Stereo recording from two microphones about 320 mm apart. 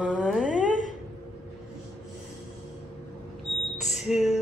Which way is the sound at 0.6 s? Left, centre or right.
Left.